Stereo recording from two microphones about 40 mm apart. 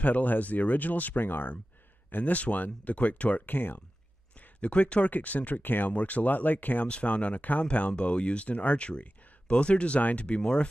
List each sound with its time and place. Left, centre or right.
0.0 s speech: left
1.2 s speech: left
3.4 s speech: left
4.6 s speech: left
5.1 s speech: left
5.6 s speech: left
5.9 s speech: left
6.9 s speech: left